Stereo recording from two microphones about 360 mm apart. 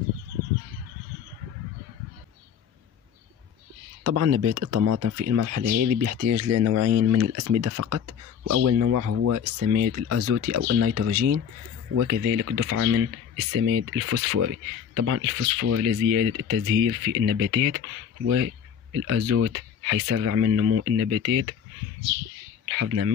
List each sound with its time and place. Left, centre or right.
4.0 s speech: right
6.3 s speech: right
11.9 s speech: right
20.8 s speech: right
22.8 s speech: right